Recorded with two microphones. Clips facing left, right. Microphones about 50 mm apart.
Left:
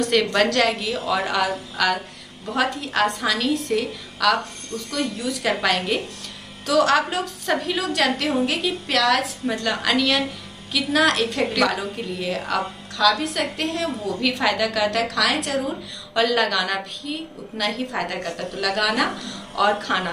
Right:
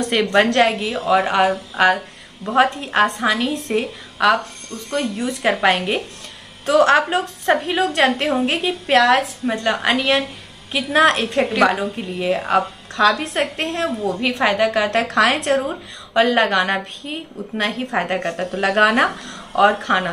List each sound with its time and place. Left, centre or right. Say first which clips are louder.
0.1 s a woman's voice: right 5 dB; right
19.5 s a woman's voice: right 5 dB; right